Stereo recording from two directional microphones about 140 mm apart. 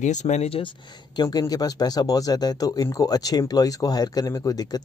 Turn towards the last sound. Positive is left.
turn(degrees=25)  # may be behind; listen again after turning